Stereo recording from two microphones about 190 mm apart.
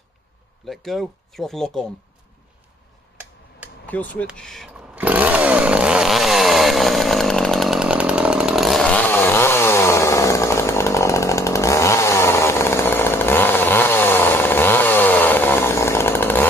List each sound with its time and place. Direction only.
0.7 s speech: centre (ahead or behind)
3.2 s tick-tock: 10° right (ahead or behind)
3.8 s speech: 10° left (ahead or behind)
4.9 s chainsaw: 10° right (ahead or behind); by 16.4 s 10° left (ahead or behind)